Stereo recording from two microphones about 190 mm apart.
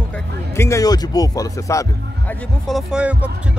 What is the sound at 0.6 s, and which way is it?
Speech, 15° left (ahead or behind).